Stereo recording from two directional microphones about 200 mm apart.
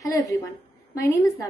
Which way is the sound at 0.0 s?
15° left (ahead or behind).